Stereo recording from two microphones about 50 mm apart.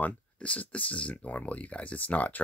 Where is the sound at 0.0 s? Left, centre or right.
Left.